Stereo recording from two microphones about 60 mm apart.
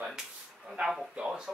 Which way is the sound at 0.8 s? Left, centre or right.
Centre.